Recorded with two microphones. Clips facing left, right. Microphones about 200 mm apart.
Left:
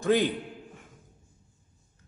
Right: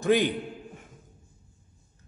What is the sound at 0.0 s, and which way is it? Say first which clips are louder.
Speech: right 1 dB; 15° right (ahead or behind).